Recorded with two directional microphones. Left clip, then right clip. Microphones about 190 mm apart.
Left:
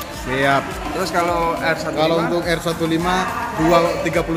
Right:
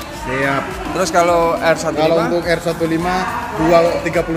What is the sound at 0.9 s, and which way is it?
Speech, 20° right (ahead or behind).